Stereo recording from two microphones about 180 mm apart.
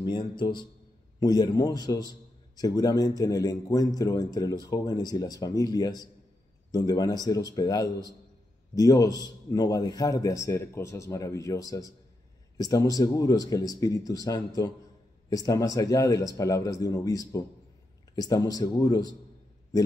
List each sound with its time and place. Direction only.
0.0 s a man's voice: 25° left (ahead or behind)